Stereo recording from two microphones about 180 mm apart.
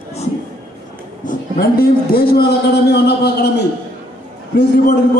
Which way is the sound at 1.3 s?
55° left (ahead or behind).